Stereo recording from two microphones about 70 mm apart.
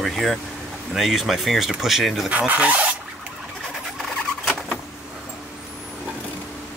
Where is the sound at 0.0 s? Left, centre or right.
Centre.